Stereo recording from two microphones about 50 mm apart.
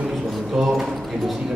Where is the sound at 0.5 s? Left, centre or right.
Centre.